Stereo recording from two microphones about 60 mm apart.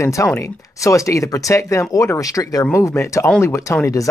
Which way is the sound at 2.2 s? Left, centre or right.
Left.